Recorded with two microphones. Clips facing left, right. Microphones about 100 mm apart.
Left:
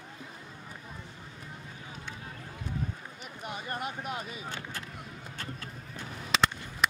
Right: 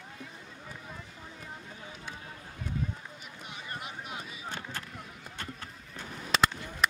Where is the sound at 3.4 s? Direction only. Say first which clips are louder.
Left 6 dB; 50° left (ahead or behind).